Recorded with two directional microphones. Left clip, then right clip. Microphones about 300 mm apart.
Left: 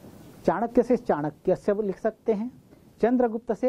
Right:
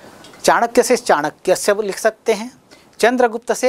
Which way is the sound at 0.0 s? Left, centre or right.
Centre.